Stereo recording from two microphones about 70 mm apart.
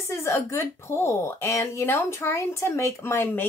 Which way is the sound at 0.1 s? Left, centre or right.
Left.